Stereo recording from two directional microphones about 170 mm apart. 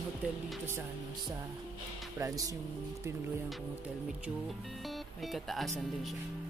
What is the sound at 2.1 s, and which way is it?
Speech, 20° right (ahead or behind).